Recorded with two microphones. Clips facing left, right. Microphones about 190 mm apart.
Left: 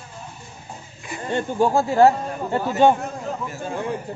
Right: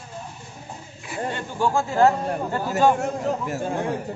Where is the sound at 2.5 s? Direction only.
25° left (ahead or behind).